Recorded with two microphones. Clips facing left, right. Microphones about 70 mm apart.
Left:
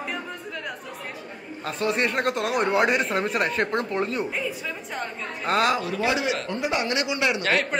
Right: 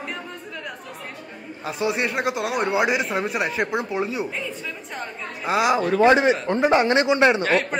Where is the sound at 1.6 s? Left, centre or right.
Centre.